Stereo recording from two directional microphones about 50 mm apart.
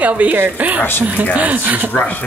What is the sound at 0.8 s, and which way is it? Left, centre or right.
Speech, left.